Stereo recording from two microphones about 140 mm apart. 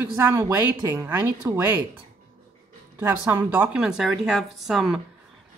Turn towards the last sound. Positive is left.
turn(degrees=-5)  # may be behind; listen again after turning